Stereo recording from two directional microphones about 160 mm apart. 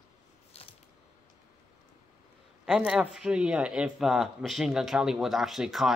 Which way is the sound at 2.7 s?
5° right (ahead or behind).